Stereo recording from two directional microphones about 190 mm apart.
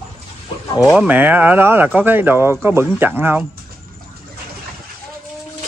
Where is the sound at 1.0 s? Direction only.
10° right (ahead or behind).